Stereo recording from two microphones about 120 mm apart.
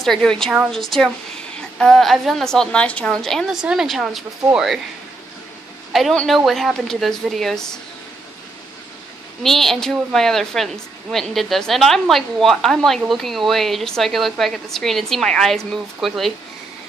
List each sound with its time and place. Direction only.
0.0 s a woman's voice: 5° left (ahead or behind)
5.9 s a woman's voice: centre (ahead or behind)
9.4 s a woman's voice: centre (ahead or behind)